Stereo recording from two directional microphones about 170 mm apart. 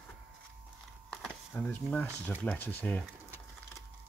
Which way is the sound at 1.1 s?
10° left (ahead or behind).